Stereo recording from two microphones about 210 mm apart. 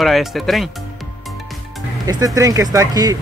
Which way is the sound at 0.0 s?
Centre (ahead or behind).